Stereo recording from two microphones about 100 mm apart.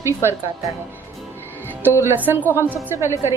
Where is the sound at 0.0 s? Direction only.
25° right (ahead or behind).